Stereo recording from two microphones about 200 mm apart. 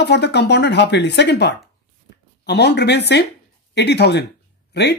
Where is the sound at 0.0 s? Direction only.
55° left (ahead or behind).